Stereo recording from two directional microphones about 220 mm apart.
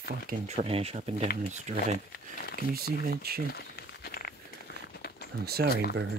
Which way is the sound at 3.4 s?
45° left (ahead or behind).